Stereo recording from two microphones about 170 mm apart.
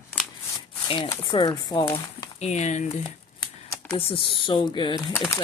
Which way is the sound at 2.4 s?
45° left (ahead or behind).